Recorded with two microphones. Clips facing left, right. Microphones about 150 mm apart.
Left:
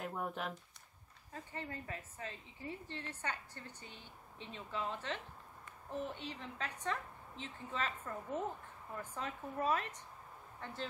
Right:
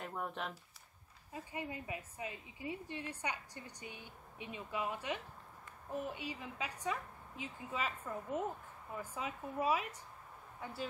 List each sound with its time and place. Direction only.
0.0 s speech: centre (ahead or behind)
1.3 s a woman's voice: 10° right (ahead or behind)